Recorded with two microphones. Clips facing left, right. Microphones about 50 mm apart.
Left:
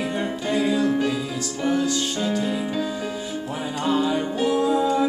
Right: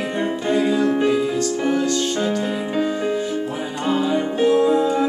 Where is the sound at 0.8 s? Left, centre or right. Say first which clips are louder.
Right 4 dB; right.